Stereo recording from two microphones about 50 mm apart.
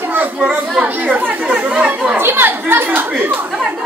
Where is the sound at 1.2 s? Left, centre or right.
Right.